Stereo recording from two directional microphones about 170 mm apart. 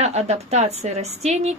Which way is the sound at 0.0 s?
40° right (ahead or behind).